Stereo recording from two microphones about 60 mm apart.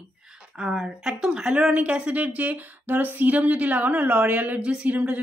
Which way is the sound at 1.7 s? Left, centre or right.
Right.